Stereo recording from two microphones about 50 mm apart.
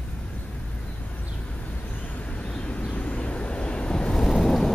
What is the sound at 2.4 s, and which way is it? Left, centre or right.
Vehicle, left.